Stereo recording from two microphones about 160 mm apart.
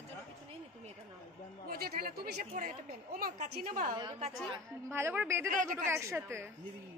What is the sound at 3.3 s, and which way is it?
Speech, 45° right (ahead or behind).